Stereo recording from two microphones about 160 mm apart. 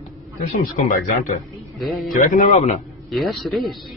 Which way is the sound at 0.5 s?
55° left (ahead or behind).